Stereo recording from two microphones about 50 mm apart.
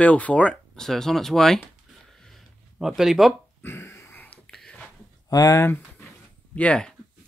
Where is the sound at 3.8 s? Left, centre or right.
Left.